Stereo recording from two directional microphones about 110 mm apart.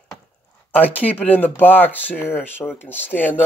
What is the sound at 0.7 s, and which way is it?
Speech, 15° left (ahead or behind).